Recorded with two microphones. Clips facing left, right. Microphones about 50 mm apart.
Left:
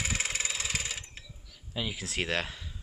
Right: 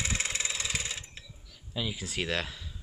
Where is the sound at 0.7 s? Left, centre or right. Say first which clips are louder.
Even; left.